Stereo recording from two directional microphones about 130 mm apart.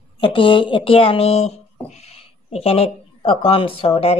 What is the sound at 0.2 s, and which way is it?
Speech, 40° left (ahead or behind).